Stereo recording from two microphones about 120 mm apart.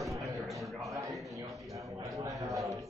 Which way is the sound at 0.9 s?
25° right (ahead or behind).